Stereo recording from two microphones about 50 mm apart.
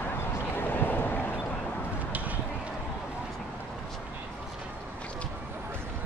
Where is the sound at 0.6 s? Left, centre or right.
Left.